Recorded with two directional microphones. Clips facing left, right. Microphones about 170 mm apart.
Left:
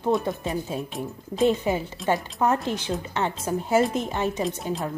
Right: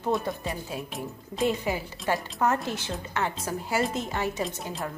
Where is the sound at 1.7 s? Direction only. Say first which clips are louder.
Left 4 dB; 20° left (ahead or behind).